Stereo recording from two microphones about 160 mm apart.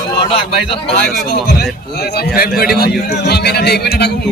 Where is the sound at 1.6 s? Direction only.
85° left.